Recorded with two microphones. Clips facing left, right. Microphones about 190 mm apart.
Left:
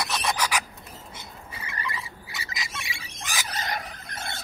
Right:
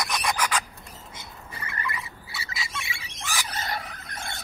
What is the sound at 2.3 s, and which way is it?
Bird, 15° left (ahead or behind).